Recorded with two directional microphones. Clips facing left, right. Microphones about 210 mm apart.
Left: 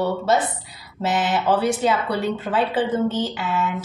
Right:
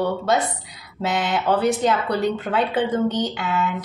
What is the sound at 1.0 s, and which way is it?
Speech, 5° left (ahead or behind).